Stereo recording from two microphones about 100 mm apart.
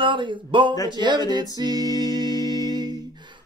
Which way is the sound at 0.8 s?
50° right (ahead or behind).